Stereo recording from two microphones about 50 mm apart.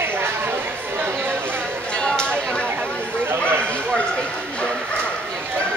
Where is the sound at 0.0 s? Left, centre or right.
Right.